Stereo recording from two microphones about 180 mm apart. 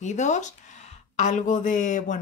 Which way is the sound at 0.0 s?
40° left (ahead or behind).